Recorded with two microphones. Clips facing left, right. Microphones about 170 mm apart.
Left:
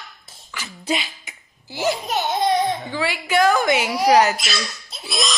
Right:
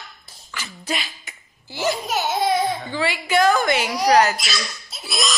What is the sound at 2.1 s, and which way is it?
Speech, centre (ahead or behind).